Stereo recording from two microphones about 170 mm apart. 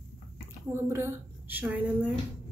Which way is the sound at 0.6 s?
15° right (ahead or behind).